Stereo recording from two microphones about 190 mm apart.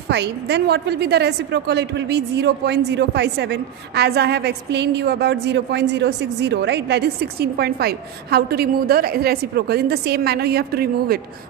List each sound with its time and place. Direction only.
0.1 s a woman's voice: 65° right (ahead or behind)